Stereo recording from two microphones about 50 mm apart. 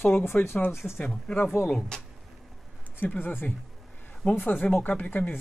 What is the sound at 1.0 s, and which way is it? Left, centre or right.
Speech, centre.